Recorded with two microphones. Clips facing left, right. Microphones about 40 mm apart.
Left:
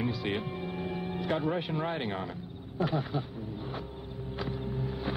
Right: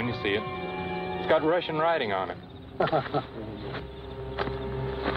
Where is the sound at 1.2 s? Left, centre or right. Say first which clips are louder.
Right 8 dB; right.